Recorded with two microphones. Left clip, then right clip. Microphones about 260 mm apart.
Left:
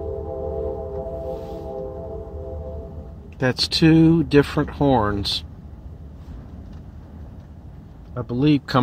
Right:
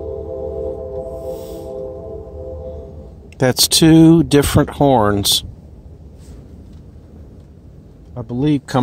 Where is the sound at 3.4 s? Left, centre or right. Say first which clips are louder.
Right 6 dB; right.